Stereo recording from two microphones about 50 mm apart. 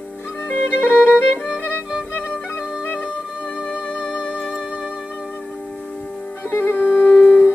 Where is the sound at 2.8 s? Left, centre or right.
Left.